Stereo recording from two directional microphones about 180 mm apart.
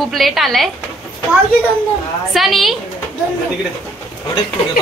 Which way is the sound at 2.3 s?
Centre (ahead or behind).